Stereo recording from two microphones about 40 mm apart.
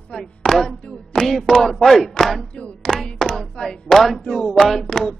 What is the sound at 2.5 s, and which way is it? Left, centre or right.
Speech, left.